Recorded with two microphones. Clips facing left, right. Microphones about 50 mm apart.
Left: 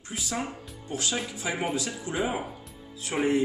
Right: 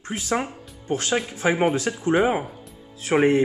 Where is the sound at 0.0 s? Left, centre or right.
Right.